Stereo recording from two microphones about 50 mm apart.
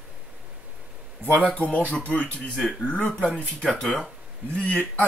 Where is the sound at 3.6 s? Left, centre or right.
Centre.